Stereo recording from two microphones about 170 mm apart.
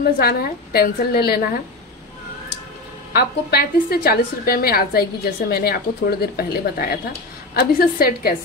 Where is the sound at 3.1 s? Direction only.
65° left (ahead or behind).